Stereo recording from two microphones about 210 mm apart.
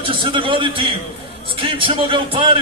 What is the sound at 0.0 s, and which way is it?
A man's voice, 25° right (ahead or behind).